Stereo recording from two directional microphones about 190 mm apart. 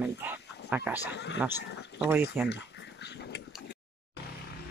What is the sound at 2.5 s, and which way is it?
Dog, 60° left (ahead or behind).